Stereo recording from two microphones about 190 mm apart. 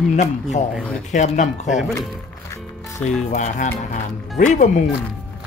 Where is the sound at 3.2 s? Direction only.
40° left (ahead or behind).